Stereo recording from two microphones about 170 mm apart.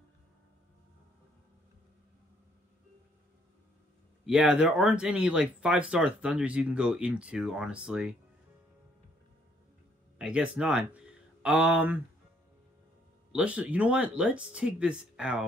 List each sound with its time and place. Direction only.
4.3 s speech: 5° right (ahead or behind)
10.1 s speech: 5° right (ahead or behind)
13.3 s speech: 5° right (ahead or behind)